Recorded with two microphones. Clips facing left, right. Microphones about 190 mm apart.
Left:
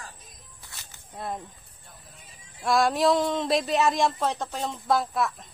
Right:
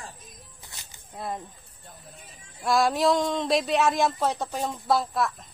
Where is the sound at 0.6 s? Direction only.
20° right (ahead or behind).